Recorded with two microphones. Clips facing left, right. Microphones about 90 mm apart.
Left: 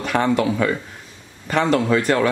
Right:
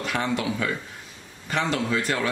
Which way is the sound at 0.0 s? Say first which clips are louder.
Left 7 dB; 50° left (ahead or behind).